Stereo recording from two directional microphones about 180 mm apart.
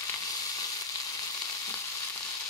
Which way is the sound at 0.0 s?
20° left (ahead or behind).